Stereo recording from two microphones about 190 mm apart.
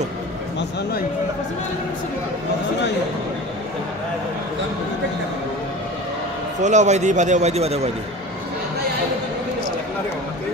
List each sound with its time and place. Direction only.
6.6 s a man's voice: 40° right (ahead or behind)